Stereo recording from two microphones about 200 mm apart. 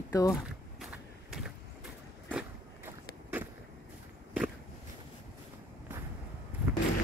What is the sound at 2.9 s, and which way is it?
Skateboard, 10° right (ahead or behind).